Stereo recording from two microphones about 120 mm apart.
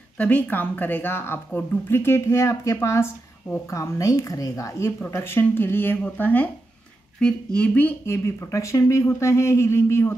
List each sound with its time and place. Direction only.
0.2 s speech: 15° left (ahead or behind)